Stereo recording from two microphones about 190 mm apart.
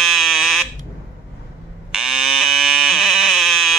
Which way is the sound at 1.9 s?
Centre (ahead or behind).